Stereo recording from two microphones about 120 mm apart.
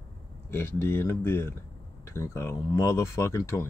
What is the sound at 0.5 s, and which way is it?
Speech, 20° left (ahead or behind).